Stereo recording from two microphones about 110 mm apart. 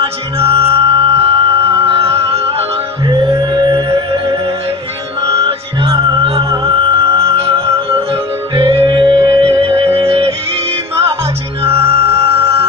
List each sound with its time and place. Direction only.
0.0 s music: 60° right (ahead or behind)
3.1 s music: 30° right (ahead or behind)
3.6 s music: 50° right (ahead or behind)
11.6 s music: 60° right (ahead or behind)